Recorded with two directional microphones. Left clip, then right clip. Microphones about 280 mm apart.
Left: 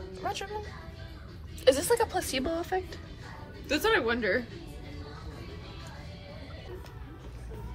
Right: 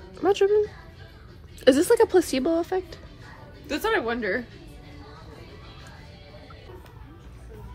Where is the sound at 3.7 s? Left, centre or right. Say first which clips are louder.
Right 1 dB; right.